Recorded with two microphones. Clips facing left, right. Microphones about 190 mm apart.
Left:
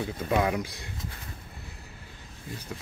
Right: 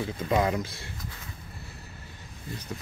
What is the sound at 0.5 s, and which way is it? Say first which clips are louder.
Speech: even; 15° left (ahead or behind).